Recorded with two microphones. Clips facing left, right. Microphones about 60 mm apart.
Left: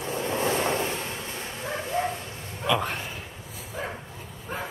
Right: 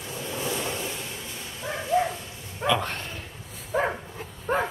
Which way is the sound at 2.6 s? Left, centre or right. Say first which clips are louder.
Right 1 dB; centre.